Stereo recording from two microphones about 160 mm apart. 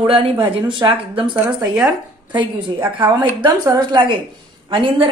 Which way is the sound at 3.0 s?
30° right (ahead or behind).